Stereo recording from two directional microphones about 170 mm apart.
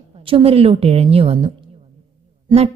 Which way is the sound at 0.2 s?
35° right (ahead or behind).